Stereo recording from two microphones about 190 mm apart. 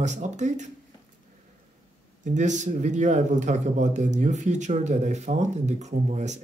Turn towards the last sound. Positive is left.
turn(degrees=-35)  # may be behind; listen again after turning